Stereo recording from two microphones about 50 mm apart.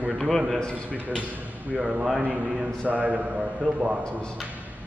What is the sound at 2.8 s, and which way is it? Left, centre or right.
Speech, right.